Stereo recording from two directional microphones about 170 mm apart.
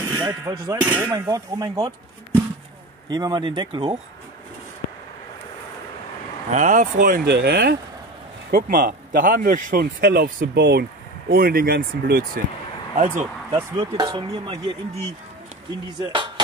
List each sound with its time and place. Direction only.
0.0 s speech: 15° right (ahead or behind)
1.1 s speech: 20° right (ahead or behind)
6.5 s speech: 45° right (ahead or behind); by 7.7 s 75° right (ahead or behind)
8.5 s speech: 60° right (ahead or behind)
12.9 s speech: 50° right (ahead or behind)
13.7 s speech: 25° right (ahead or behind)